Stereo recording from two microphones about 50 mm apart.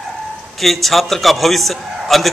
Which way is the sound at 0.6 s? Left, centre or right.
Centre.